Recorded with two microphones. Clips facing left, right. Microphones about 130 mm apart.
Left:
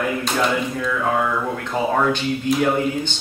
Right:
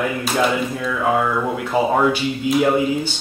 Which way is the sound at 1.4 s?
10° right (ahead or behind).